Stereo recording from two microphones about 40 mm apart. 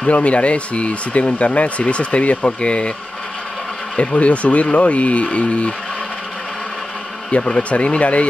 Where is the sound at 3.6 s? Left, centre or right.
Centre.